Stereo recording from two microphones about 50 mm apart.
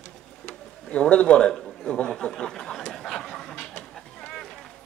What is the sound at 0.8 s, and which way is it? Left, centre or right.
Speech, left.